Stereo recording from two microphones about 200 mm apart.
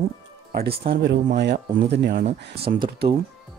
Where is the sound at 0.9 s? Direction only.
65° right (ahead or behind).